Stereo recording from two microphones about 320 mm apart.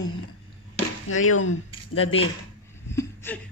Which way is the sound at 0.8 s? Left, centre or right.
Left.